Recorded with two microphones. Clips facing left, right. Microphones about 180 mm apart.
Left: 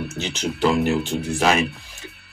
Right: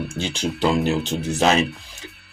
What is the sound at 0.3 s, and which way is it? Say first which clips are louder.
Speech: left 1 dB; 15° right (ahead or behind).